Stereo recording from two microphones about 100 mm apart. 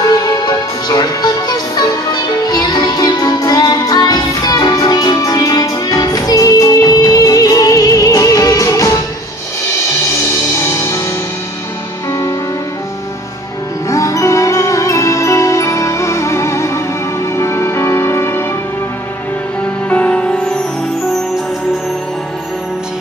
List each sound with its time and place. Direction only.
0.1 s music: 45° left (ahead or behind)
12.1 s music: 30° left (ahead or behind)
13.8 s music: 30° left (ahead or behind)
19.9 s music: 15° left (ahead or behind)